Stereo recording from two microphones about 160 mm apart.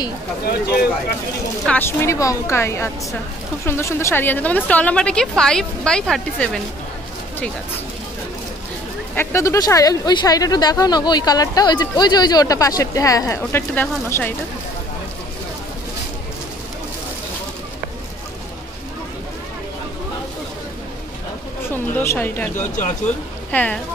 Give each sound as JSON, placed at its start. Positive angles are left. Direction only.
{"t": 0.5, "sound": "speech", "side_deg": 75}
{"t": 1.7, "sound": "a woman's voice", "side_deg": 15}
{"t": 9.1, "sound": "a woman's voice", "side_deg": 15}
{"t": 21.6, "sound": "a woman's voice", "side_deg": 15}